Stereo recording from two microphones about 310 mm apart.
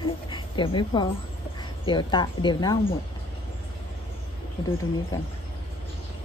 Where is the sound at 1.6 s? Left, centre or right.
Centre.